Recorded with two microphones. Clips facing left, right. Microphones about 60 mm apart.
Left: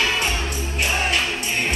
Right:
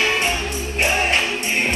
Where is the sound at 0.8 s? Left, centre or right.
Right.